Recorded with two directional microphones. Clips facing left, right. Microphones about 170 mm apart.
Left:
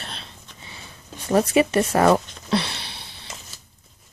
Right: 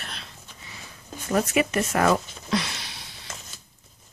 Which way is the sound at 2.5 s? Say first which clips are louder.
Left 3 dB; 30° left (ahead or behind).